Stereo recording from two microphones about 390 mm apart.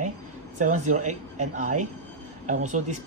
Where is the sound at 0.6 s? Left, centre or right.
Centre.